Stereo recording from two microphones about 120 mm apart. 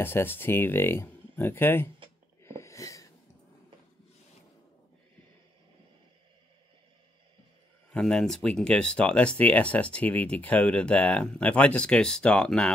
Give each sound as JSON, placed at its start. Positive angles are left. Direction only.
{"t": 0.0, "sound": "speech", "side_deg": 20}
{"t": 2.4, "sound": "a sound", "side_deg": 25}
{"t": 7.9, "sound": "speech", "side_deg": 5}